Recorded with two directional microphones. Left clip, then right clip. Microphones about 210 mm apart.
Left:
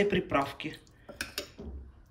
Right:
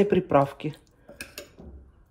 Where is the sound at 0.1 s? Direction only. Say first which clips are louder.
Right 8 dB; 20° right (ahead or behind).